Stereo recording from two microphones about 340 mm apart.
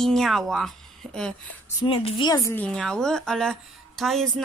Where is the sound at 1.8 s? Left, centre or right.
Centre.